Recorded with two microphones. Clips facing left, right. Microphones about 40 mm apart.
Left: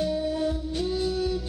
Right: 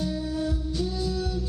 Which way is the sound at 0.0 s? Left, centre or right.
Left.